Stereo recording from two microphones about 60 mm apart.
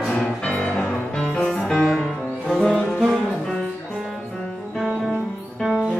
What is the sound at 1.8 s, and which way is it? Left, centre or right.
Music, centre.